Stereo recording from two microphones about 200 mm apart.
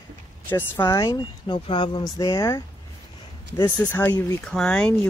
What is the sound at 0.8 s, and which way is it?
Speech, 15° left (ahead or behind).